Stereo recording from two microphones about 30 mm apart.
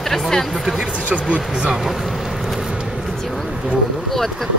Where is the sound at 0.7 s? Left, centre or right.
Right.